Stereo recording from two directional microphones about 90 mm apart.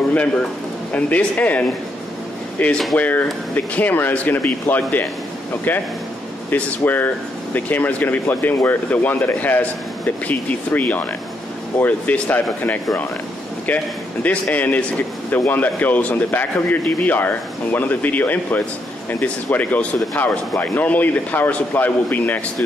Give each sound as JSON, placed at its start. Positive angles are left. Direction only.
{"t": 0.1, "sound": "speech", "side_deg": 10}
{"t": 2.6, "sound": "speech", "side_deg": 20}
{"t": 14.2, "sound": "speech", "side_deg": 15}